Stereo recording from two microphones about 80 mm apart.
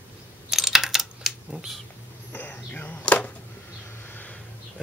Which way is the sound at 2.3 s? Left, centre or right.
Left.